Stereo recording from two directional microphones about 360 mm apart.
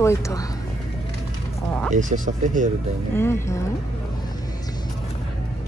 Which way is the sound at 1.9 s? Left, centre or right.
Right.